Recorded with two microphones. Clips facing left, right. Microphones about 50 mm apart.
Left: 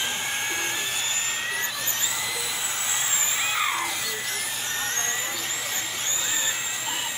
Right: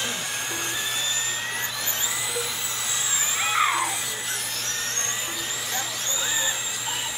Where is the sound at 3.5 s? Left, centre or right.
Centre.